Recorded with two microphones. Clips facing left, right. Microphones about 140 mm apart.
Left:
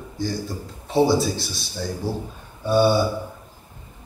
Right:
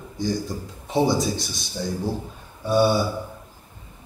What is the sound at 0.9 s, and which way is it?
Speech, 20° right (ahead or behind).